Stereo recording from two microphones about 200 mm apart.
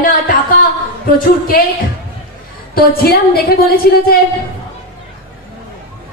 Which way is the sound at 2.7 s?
50° left (ahead or behind).